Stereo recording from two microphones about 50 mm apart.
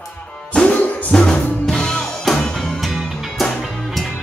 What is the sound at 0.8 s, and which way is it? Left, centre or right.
Music, left.